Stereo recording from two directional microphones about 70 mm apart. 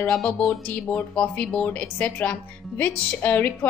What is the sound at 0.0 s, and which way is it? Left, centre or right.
A woman's voice, centre.